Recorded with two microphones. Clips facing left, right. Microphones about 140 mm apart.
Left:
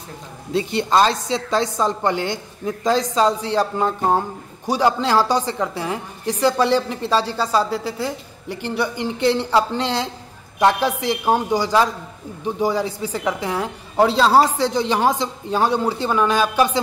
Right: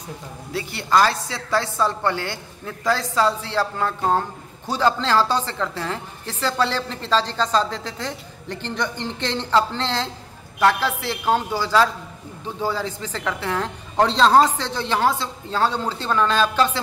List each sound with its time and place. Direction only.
0.5 s a woman's voice: 20° left (ahead or behind)